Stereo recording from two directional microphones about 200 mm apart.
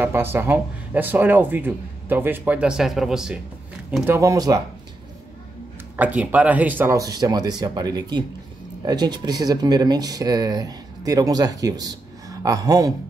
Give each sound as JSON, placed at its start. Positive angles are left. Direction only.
{"t": 0.0, "sound": "speech", "side_deg": -10}
{"t": 5.9, "sound": "speech", "side_deg": -10}